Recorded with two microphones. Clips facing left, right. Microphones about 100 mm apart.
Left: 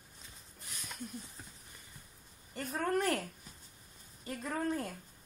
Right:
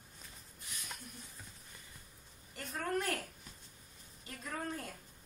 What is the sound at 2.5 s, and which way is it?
Speech, 35° left (ahead or behind).